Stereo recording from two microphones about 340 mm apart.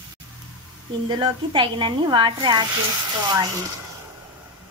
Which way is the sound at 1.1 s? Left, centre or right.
Centre.